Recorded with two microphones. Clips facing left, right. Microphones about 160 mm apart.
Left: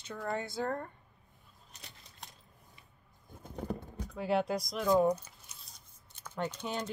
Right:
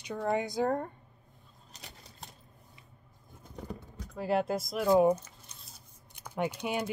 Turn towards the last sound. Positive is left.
turn(degrees=-10)  # may be behind; listen again after turning